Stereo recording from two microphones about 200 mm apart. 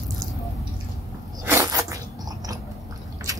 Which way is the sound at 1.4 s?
15° right (ahead or behind).